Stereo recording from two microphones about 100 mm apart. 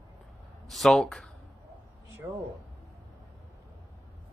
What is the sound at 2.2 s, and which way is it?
Speech, 20° right (ahead or behind).